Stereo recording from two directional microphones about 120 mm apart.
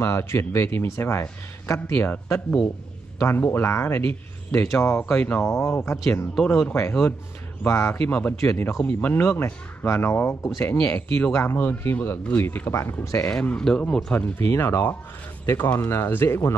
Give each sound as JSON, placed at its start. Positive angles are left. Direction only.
{"t": 0.0, "sound": "speech", "side_deg": 20}
{"t": 5.5, "sound": "speech", "side_deg": 25}
{"t": 6.3, "sound": "speech", "side_deg": 5}
{"t": 6.7, "sound": "speech", "side_deg": 20}
{"t": 7.9, "sound": "speech", "side_deg": 10}
{"t": 13.3, "sound": "speech", "side_deg": 5}
{"t": 14.5, "sound": "speech", "side_deg": 25}